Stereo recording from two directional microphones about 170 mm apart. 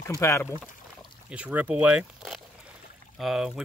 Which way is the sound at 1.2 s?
10° right (ahead or behind).